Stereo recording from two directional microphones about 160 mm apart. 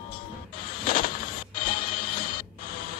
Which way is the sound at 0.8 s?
65° left (ahead or behind).